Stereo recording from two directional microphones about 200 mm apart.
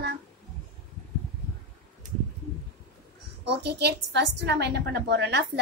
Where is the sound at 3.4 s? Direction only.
55° right (ahead or behind).